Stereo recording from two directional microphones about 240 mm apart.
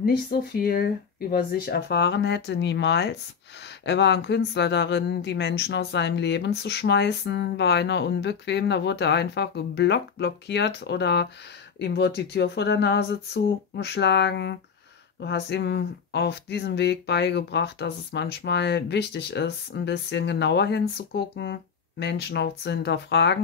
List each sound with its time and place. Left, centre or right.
0.0 s speech: left